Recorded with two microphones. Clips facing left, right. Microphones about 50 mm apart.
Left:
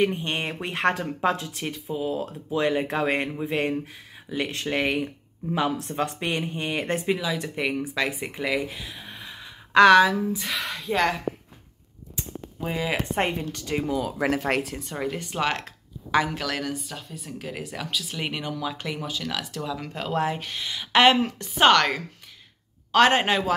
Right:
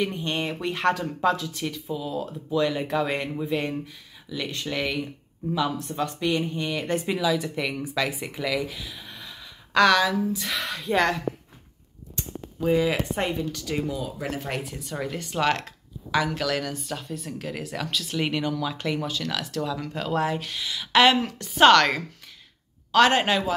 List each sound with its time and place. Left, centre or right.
0.0 s speech: left
10.5 s speech: centre
12.2 s a sound: centre
13.0 s speech: left
13.8 s speech: left
14.1 s speech: left
15.0 s speech: left
16.8 s speech: centre
17.4 s speech: centre
22.8 s speech: left